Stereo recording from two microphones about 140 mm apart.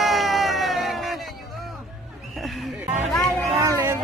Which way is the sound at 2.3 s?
Centre (ahead or behind).